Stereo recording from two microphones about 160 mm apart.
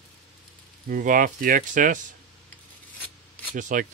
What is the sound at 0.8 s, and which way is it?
Speech, 55° right (ahead or behind).